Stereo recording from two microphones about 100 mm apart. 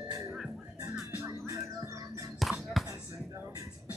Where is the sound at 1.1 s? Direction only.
30° right (ahead or behind).